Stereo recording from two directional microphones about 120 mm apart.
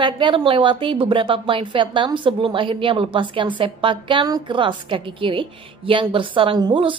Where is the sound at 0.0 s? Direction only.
45° right (ahead or behind).